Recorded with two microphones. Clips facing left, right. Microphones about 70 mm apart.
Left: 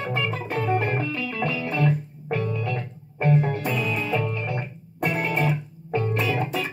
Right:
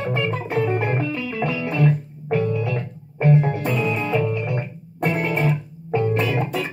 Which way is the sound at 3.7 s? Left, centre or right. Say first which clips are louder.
Right 4 dB; centre.